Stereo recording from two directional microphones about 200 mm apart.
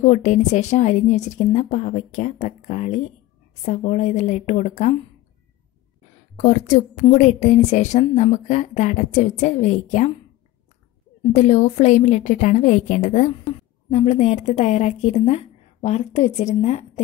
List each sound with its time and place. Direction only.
0.0 s a woman's voice: 35° left (ahead or behind)
6.3 s a woman's voice: 35° left (ahead or behind)
11.3 s a woman's voice: 35° left (ahead or behind)